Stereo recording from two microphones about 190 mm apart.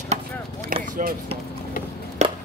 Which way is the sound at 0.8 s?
45° right (ahead or behind).